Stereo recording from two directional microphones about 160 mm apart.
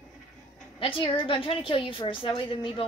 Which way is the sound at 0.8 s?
30° left (ahead or behind).